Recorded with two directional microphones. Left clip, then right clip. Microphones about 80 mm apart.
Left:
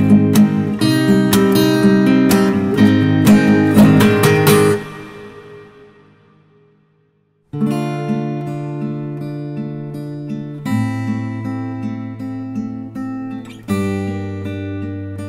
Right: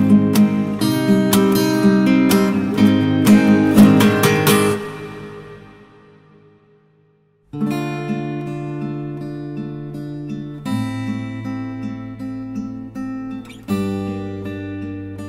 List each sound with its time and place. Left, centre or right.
0.7 s music: right
7.5 s music: right